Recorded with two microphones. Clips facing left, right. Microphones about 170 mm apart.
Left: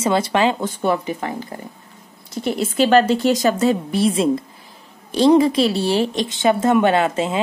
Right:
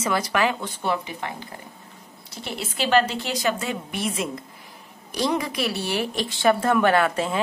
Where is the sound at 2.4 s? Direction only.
45° left (ahead or behind).